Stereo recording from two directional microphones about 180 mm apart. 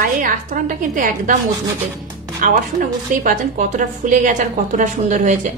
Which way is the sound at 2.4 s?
45° right (ahead or behind).